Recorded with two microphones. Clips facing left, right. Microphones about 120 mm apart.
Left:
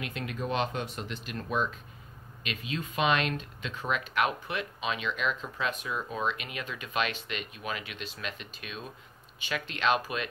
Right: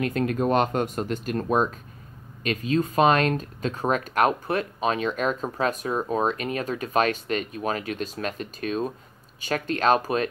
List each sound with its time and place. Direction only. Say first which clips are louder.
0.0 s speech: right 11 dB; 45° right (ahead or behind)